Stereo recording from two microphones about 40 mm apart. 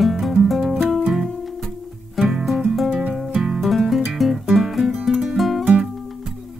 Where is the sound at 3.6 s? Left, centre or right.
Centre.